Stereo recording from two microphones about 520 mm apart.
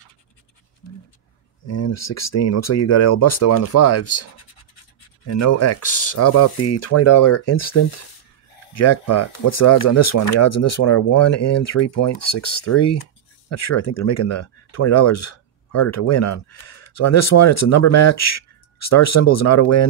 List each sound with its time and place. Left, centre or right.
1.7 s speech: left